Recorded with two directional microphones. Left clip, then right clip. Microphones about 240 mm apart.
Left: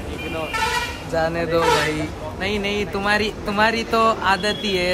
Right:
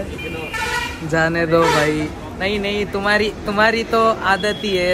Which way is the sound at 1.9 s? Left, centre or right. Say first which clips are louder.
Right 3 dB; centre.